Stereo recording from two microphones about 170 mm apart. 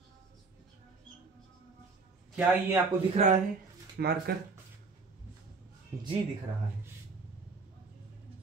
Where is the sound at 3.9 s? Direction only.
65° right (ahead or behind).